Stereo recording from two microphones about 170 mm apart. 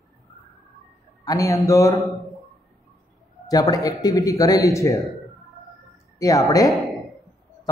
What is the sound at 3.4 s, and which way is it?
A man's voice, 20° left (ahead or behind).